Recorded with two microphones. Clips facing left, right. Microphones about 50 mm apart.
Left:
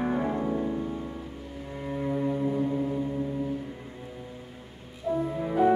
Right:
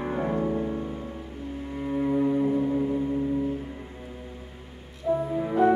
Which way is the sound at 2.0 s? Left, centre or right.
Centre.